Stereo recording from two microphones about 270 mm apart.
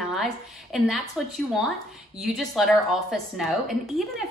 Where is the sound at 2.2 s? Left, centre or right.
Centre.